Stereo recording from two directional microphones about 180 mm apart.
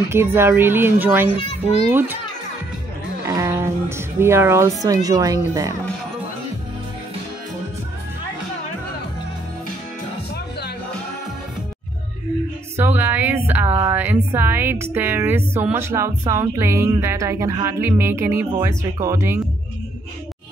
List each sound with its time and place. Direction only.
0.1 s music: 15° right (ahead or behind)
1.3 s a child's voice: 35° left (ahead or behind)
1.9 s music: 10° right (ahead or behind)
3.3 s speech: 15° right (ahead or behind)
5.5 s music: 20° right (ahead or behind)
12.7 s music: 15° right (ahead or behind)
13.5 s a sound: 10° right (ahead or behind)
13.8 s music: 10° right (ahead or behind)